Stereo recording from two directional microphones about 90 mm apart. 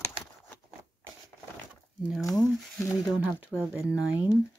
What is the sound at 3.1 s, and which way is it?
Speech, 15° right (ahead or behind).